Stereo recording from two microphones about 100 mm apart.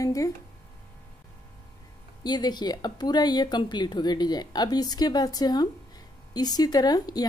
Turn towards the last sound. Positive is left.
turn(degrees=40)  # may be behind; listen again after turning